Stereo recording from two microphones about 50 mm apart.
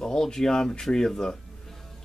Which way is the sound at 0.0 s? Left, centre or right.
Centre.